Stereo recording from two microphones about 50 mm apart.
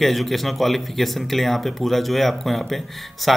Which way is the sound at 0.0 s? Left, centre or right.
Centre.